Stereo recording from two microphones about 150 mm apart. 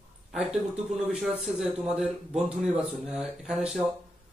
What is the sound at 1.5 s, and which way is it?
Speech, 5° right (ahead or behind).